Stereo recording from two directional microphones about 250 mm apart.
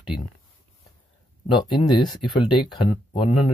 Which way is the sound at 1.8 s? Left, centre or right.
Centre.